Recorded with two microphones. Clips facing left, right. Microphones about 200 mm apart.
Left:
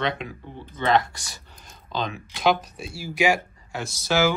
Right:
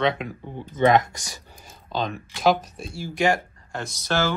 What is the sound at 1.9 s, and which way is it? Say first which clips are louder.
Speech: right 2 dB; centre (ahead or behind).